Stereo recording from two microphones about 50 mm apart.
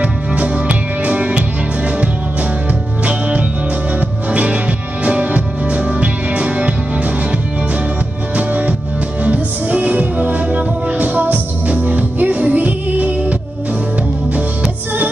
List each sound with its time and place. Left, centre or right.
0.0 s music: right
3.1 s music: right
8.4 s music: right